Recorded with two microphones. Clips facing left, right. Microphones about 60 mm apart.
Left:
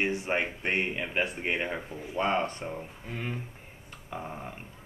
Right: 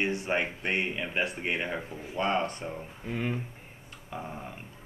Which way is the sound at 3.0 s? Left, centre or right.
Centre.